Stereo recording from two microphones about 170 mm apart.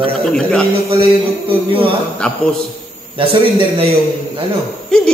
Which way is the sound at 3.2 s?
35° right (ahead or behind).